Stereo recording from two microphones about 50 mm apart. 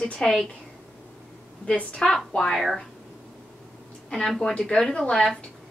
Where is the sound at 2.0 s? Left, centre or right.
Left.